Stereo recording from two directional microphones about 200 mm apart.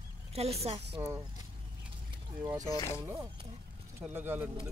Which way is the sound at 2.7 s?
20° left (ahead or behind).